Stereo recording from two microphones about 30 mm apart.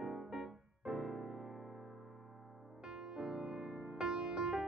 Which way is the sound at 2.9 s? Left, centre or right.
Centre.